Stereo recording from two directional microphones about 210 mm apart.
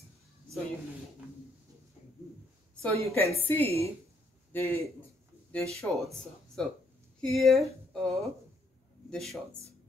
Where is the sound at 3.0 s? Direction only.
30° right (ahead or behind).